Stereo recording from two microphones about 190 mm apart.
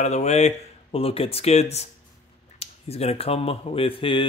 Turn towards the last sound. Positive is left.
turn(degrees=25)  # may be behind; listen again after turning